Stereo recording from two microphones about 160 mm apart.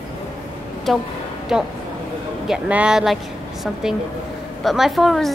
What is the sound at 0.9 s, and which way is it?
A woman's voice, centre (ahead or behind).